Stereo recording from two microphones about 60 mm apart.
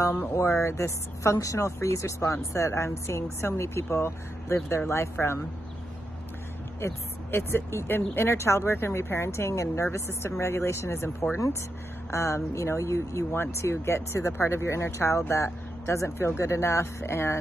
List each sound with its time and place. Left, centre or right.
0.3 s a woman's voice: left
6.8 s a woman's voice: left